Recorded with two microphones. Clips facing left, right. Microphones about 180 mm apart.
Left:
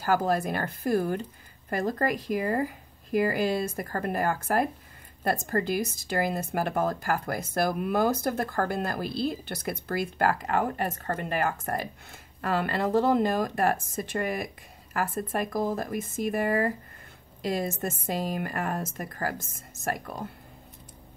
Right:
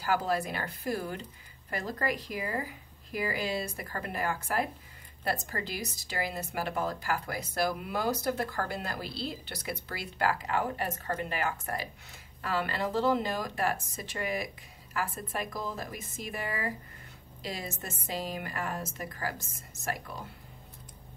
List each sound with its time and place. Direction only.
0.0 s a woman's voice: 50° left (ahead or behind)